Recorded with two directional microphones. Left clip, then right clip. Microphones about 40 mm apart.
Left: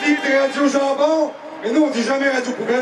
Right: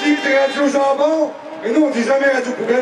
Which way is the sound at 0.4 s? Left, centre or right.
Centre.